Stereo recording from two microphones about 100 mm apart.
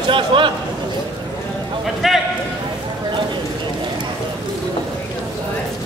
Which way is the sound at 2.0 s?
5° right (ahead or behind).